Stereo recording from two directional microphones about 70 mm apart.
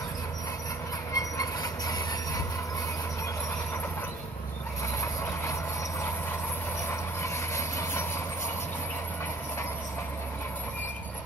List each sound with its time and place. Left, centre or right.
1.1 s train: left
5.0 s train: left
6.9 s vehicle: left